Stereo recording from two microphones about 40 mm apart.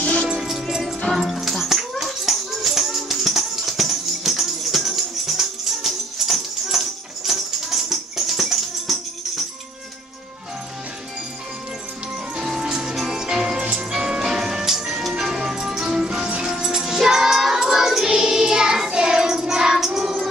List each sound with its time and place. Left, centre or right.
0.0 s music: left
0.4 s music: centre
1.1 s speech: centre
1.5 s music: centre
12.4 s music: centre
16.6 s music: centre